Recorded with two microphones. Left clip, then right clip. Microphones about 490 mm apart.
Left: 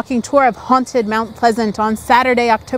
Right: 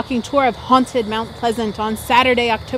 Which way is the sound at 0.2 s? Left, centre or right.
Left.